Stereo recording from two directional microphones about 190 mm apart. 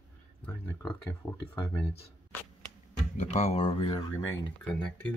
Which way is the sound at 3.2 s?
35° left (ahead or behind).